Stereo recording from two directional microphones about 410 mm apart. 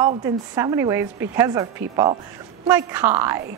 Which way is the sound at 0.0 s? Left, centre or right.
Centre.